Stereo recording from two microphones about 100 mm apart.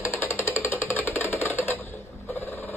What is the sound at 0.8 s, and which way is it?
Music, 25° left (ahead or behind).